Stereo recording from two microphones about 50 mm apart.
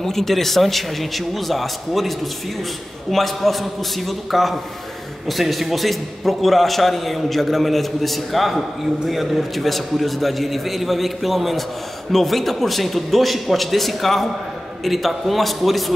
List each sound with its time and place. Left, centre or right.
0.0 s a man's voice: centre